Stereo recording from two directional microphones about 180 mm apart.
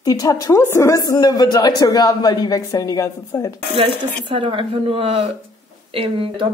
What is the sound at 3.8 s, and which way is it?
Speech, 30° right (ahead or behind).